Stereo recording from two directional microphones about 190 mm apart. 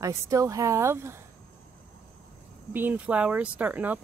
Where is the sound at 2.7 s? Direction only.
10° right (ahead or behind).